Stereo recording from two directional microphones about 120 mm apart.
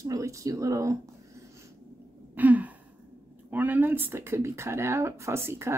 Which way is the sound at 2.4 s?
15° right (ahead or behind).